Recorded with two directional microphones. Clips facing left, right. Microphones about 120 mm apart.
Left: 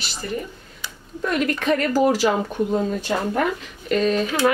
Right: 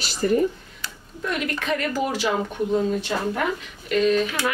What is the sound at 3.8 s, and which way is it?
Speech, 40° left (ahead or behind).